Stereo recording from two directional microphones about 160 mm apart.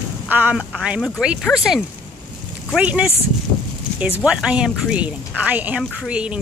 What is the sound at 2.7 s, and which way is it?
Speech, 10° right (ahead or behind).